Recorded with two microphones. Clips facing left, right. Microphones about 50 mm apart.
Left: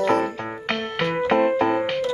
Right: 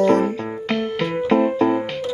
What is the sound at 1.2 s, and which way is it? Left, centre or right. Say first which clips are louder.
Music: right 2 dB; left.